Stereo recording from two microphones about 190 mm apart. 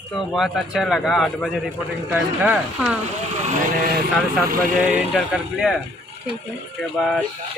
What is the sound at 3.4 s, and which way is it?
Speech, 50° right (ahead or behind).